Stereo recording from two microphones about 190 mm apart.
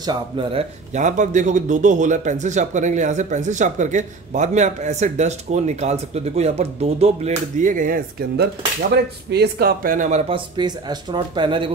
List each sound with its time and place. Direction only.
0.0 s a man's voice: 25° right (ahead or behind); by 8.5 s 45° right (ahead or behind)
8.9 s speech: 60° right (ahead or behind); by 10.2 s 40° right (ahead or behind)
10.3 s speech: 25° right (ahead or behind)